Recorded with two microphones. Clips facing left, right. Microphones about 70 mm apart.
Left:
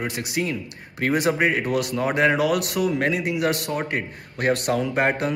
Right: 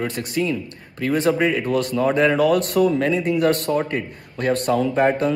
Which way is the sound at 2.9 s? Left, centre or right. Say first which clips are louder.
Right 3 dB; left.